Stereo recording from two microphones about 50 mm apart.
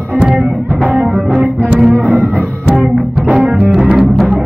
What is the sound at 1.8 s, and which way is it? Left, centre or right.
Music, centre.